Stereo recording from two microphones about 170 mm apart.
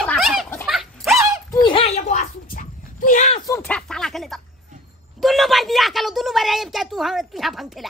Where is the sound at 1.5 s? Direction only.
30° left (ahead or behind).